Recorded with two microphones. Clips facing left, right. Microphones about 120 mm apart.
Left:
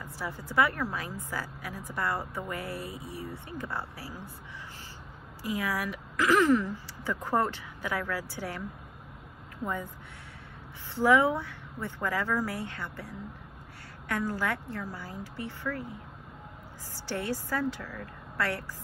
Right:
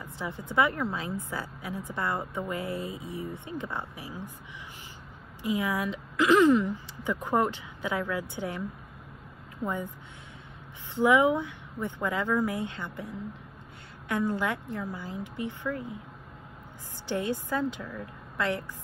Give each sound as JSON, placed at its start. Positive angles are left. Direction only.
{"t": 0.0, "sound": "a woman's voice", "side_deg": -20}
{"t": 5.4, "sound": "a woman's voice", "side_deg": -20}
{"t": 11.0, "sound": "a woman's voice", "side_deg": -15}
{"t": 16.9, "sound": "a woman's voice", "side_deg": -20}